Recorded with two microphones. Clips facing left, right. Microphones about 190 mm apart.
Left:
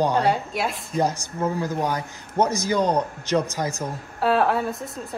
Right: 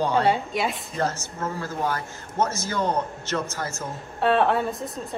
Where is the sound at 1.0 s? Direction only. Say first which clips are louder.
Left 4 dB; 15° left (ahead or behind).